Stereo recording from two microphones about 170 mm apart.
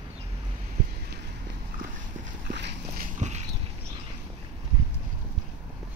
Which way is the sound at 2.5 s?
90° right.